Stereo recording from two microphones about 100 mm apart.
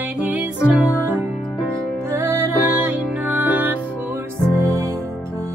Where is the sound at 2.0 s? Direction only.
25° right (ahead or behind).